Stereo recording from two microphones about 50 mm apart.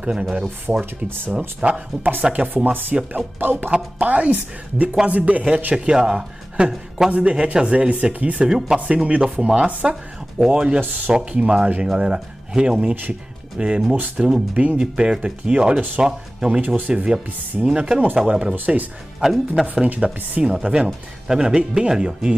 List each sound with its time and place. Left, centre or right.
0.0 s speech: right
5.9 s speech: centre
8.5 s speech: centre
8.7 s speech: right
9.7 s speech: right
10.4 s speech: centre
16.6 s speech: right
16.9 s speech: centre
19.6 s speech: right